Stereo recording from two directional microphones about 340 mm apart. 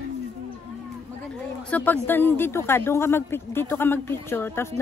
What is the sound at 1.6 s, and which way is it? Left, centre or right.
Speech, centre.